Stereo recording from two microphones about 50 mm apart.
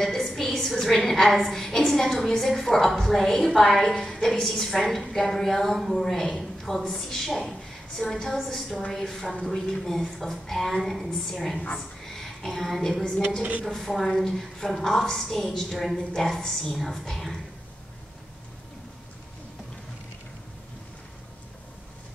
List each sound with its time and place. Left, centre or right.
0.0 s a woman's voice: centre
12.2 s a sound: centre
13.4 s a woman's voice: right
13.7 s a woman's voice: centre